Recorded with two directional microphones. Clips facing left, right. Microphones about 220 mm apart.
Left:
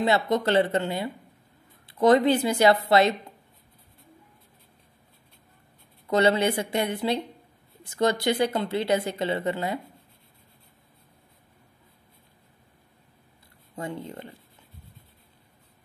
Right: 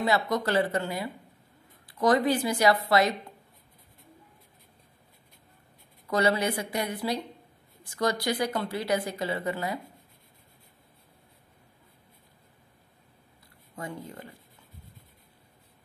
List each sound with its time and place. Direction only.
0.0 s speech: 25° left (ahead or behind)
6.0 s speech: 25° left (ahead or behind)
13.7 s speech: 25° left (ahead or behind)